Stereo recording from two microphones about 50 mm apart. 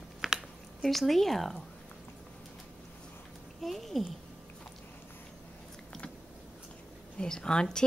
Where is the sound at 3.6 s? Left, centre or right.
Centre.